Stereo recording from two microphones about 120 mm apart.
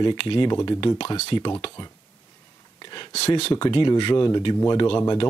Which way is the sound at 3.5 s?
40° left (ahead or behind).